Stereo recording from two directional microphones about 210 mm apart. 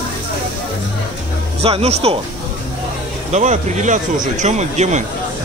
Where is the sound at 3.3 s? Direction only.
35° right (ahead or behind).